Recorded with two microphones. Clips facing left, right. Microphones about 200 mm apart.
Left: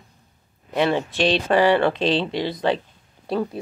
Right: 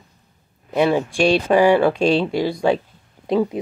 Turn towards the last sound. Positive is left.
turn(degrees=-15)  # may be behind; listen again after turning